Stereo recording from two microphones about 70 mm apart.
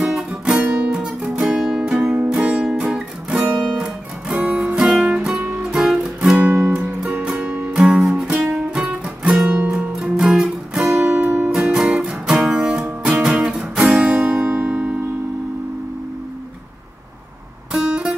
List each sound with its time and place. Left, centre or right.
0.3 s guitar: centre
1.4 s music: centre
6.3 s music: right
6.6 s music: centre
9.4 s guitar: right
9.7 s music: centre
17.7 s music: centre